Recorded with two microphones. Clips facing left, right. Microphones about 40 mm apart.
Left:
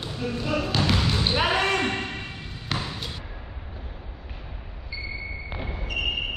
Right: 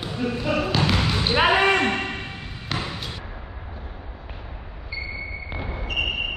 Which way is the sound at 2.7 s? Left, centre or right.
Centre.